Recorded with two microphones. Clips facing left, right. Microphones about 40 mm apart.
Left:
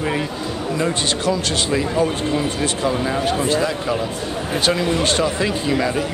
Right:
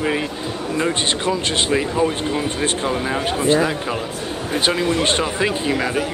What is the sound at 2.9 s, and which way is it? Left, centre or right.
Speech, centre.